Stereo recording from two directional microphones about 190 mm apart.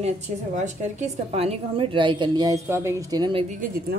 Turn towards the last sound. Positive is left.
turn(degrees=-45)  # may be behind; listen again after turning